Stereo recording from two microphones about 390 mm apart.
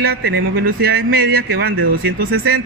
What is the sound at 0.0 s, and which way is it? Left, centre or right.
Speech, right.